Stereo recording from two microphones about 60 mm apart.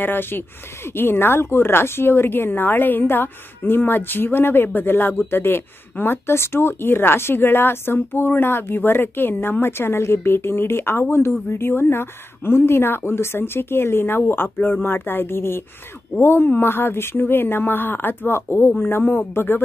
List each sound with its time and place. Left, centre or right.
0.0 s a woman's voice: left